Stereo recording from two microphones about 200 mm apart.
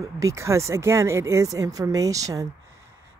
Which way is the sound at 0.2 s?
15° right (ahead or behind).